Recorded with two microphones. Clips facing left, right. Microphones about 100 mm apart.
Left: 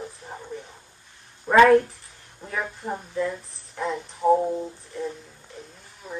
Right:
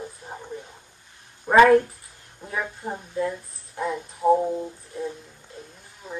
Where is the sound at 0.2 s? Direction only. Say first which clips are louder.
Even; 10° right (ahead or behind).